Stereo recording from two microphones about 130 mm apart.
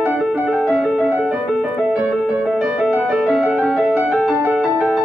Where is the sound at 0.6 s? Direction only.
Centre (ahead or behind).